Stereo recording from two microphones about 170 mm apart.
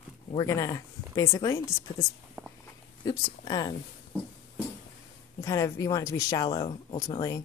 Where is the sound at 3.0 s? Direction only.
25° left (ahead or behind).